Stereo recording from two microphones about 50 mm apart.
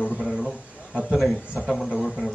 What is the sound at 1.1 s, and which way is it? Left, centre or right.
Speech, centre.